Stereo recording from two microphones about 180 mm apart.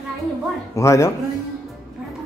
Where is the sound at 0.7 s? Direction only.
15° left (ahead or behind).